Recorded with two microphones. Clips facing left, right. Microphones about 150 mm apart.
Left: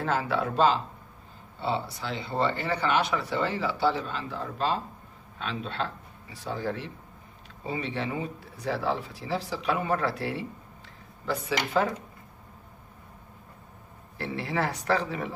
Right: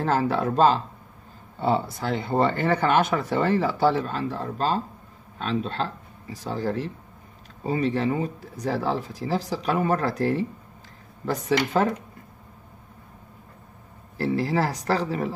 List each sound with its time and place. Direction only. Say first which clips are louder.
0.0 s speech: right 5 dB; 40° right (ahead or behind)
14.1 s speech: right 7 dB; 40° right (ahead or behind)